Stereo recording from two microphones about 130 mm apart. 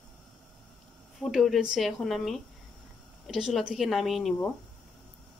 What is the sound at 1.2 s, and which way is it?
Speech, centre (ahead or behind).